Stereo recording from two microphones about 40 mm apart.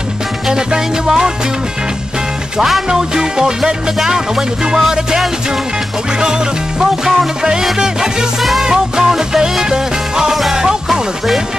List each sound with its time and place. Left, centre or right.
0.5 s music: centre
2.9 s music: centre
8.4 s music: centre
8.6 s music: centre